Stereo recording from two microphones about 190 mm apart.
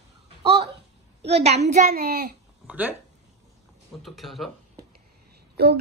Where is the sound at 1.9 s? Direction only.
50° right (ahead or behind).